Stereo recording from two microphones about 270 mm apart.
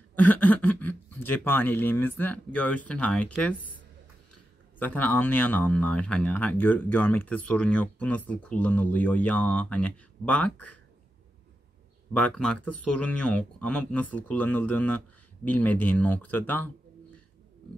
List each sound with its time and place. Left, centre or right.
0.1 s speech: centre
12.1 s speech: centre